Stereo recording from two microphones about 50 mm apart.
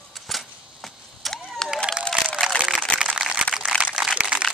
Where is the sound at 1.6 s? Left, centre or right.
Centre.